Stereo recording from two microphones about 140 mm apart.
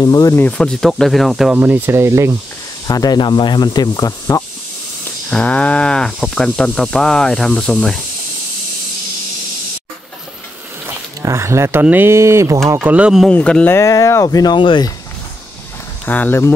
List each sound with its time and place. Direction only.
0.0 s speech: 25° left (ahead or behind)
0.4 s speech: 10° left (ahead or behind)
1.5 s speech: 10° right (ahead or behind)
2.9 s speech: 30° left (ahead or behind)
5.3 s speech: 10° left (ahead or behind)
11.2 s speech: 20° right (ahead or behind)
12.7 s speech: 10° right (ahead or behind)
13.3 s speech: 10° left (ahead or behind)
13.7 s speech: 20° left (ahead or behind)
16.1 s speech: 15° left (ahead or behind)